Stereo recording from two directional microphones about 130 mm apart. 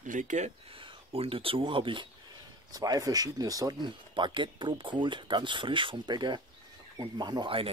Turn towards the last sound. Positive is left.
turn(degrees=-40)  # may be behind; listen again after turning